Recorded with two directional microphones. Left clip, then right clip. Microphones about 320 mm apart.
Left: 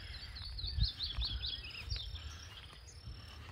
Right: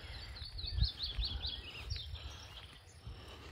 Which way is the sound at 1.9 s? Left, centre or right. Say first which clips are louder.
Left 2 dB; right.